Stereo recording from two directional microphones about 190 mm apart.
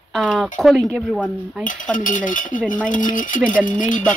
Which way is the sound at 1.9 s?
45° left (ahead or behind).